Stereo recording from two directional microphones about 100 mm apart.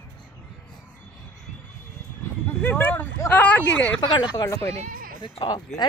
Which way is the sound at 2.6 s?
15° left (ahead or behind).